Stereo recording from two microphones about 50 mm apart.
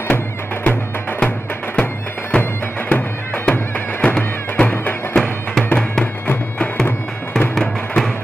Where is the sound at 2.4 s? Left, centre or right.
Left.